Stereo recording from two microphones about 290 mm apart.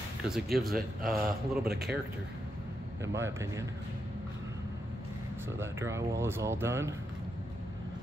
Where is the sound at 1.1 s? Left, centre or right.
Centre.